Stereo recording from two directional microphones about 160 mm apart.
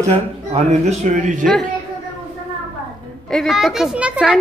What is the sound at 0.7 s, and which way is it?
Speech, 50° right (ahead or behind).